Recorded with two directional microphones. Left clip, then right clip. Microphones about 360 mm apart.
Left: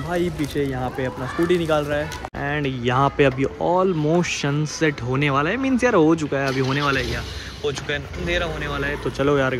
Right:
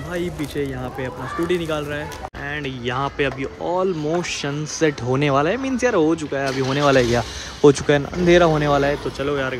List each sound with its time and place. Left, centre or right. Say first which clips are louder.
0.1 s speech: left 2 dB; centre
9.2 s speech: left 6 dB; centre